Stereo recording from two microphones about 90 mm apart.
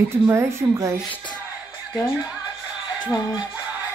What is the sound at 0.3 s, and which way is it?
Speech, 30° right (ahead or behind).